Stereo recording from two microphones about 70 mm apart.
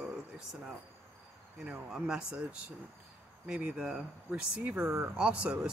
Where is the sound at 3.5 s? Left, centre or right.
Centre.